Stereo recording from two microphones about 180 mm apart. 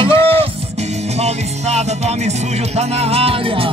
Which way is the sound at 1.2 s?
40° right (ahead or behind).